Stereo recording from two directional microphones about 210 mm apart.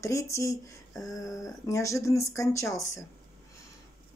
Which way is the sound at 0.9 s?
Centre (ahead or behind).